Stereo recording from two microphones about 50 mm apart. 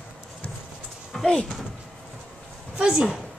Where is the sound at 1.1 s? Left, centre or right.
Centre.